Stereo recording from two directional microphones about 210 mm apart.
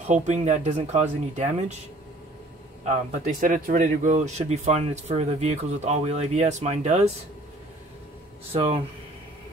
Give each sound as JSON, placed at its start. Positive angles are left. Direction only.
{"t": 0.0, "sound": "a man's voice", "side_deg": -35}
{"t": 2.8, "sound": "a man's voice", "side_deg": -35}
{"t": 8.5, "sound": "speech", "side_deg": -25}